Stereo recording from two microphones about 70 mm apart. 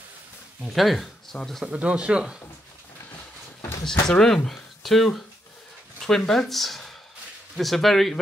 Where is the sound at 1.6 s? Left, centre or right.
Centre.